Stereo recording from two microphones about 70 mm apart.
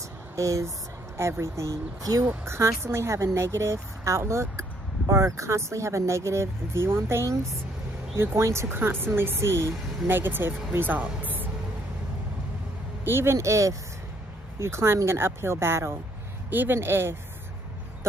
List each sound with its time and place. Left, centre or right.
0.4 s speech: right
2.2 s speech: right
10.0 s speech: right
13.0 s speech: right
16.4 s speech: right